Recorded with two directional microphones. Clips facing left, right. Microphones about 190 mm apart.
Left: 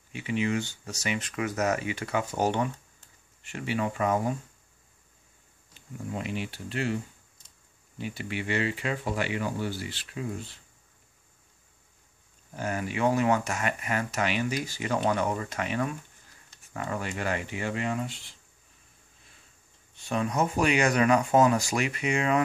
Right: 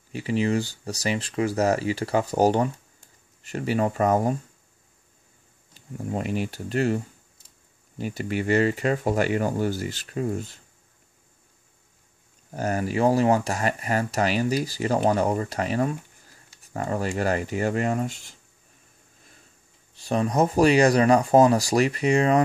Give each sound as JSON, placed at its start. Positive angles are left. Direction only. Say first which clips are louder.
{"t": 0.1, "sound": "speech", "louder": "right 5 dB", "side_deg": -35}
{"t": 5.8, "sound": "speech", "louder": "right 5 dB", "side_deg": -40}
{"t": 8.0, "sound": "speech", "louder": "right 6 dB", "side_deg": -40}
{"t": 12.5, "sound": "speech", "louder": "right 6 dB", "side_deg": -40}
{"t": 19.9, "sound": "speech", "louder": "right 5 dB", "side_deg": -35}